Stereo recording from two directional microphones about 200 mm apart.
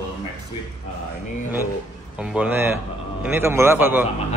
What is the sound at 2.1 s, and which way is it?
A man's voice, 5° right (ahead or behind).